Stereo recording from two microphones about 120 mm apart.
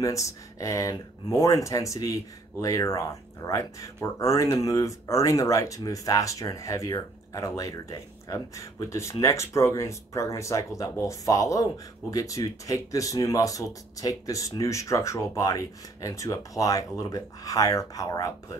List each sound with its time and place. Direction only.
0.0 s speech: 25° left (ahead or behind)